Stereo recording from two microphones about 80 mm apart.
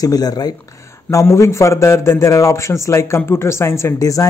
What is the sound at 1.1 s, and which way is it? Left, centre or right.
A man's voice, left.